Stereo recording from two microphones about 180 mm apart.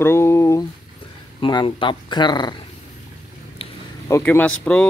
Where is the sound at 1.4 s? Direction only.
25° left (ahead or behind).